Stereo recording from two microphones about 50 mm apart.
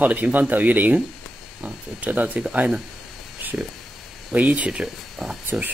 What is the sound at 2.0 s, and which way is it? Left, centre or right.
Speech, right.